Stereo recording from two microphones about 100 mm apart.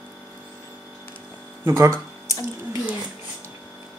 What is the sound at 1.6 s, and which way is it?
Speech, 30° right (ahead or behind).